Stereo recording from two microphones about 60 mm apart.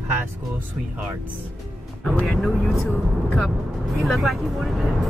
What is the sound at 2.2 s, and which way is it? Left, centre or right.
Speech, centre.